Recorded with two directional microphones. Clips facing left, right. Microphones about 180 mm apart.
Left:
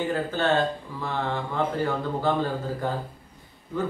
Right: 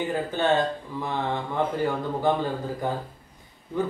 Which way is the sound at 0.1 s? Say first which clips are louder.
Even; 15° right (ahead or behind).